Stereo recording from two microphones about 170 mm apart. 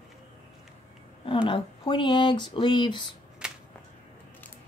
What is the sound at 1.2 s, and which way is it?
Speech, 30° left (ahead or behind).